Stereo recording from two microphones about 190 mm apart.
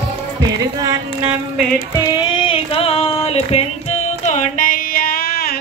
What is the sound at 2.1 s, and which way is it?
Music, 30° left (ahead or behind).